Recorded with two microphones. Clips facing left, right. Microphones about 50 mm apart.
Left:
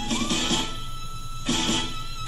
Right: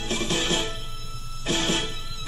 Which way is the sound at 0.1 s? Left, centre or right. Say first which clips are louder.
Right 1 dB; right.